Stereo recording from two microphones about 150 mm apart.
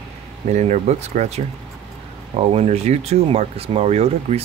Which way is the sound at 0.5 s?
50° right (ahead or behind).